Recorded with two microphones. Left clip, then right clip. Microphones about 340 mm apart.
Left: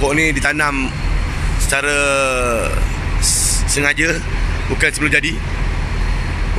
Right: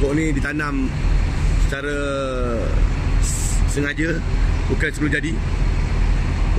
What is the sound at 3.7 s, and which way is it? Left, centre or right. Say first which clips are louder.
Speech: left 7 dB; centre.